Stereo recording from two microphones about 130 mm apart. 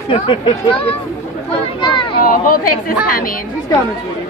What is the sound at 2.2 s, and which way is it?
A woman's voice, 90° left.